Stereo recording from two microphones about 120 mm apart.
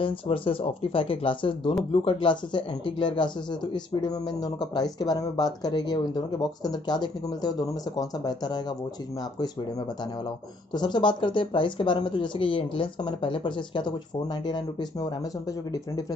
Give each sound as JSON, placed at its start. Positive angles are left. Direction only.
{"t": 0.0, "sound": "speech", "side_deg": 50}
{"t": 10.7, "sound": "speech", "side_deg": 40}